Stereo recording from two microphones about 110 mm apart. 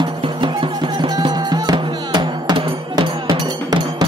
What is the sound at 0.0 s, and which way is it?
Music, 45° right (ahead or behind).